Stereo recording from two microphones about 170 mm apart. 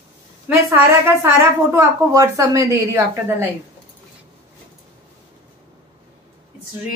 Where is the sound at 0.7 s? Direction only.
15° right (ahead or behind).